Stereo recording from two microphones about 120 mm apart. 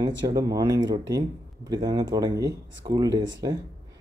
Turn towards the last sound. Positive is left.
turn(degrees=-30)  # may be behind; listen again after turning